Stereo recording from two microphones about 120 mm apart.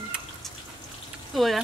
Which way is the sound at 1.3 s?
Centre (ahead or behind).